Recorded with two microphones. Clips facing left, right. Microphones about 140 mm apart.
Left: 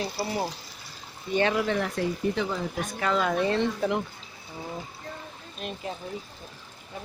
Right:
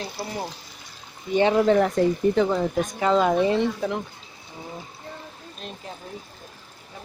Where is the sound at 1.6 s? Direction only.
40° right (ahead or behind).